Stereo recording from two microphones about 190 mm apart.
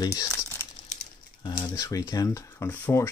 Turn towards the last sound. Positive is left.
turn(degrees=10)  # may be behind; listen again after turning